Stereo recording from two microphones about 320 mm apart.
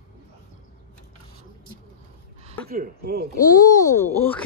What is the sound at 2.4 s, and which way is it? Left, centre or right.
Speech, right.